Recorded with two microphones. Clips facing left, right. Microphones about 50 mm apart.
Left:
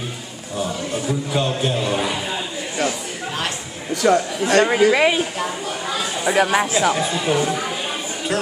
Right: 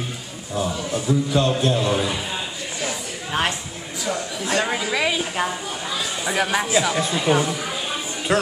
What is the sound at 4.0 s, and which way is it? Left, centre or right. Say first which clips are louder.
Speech: left 9 dB; left.